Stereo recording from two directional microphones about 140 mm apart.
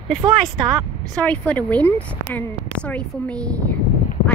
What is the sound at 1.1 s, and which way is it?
Speech, 10° left (ahead or behind).